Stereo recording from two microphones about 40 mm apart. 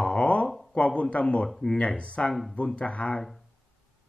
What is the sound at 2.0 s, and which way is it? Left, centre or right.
Music, left.